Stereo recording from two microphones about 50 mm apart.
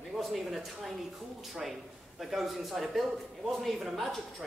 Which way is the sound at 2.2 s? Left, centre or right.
Centre.